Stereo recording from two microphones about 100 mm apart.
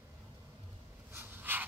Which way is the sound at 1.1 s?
20° right (ahead or behind).